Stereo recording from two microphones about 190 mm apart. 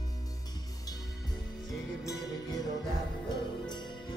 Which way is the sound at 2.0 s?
20° left (ahead or behind).